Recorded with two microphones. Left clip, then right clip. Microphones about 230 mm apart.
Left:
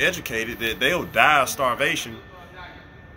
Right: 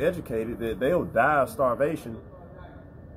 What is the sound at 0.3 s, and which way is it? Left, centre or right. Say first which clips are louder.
Speech: left 4 dB; left.